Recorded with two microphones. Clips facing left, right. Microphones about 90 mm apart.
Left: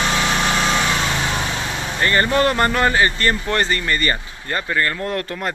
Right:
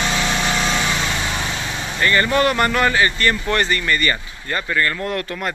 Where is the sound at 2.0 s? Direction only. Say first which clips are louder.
Even; 35° left (ahead or behind).